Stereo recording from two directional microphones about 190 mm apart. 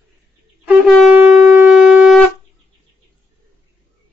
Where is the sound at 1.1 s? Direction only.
10° right (ahead or behind).